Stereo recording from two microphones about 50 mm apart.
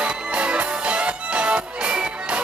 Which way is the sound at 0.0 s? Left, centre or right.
Right.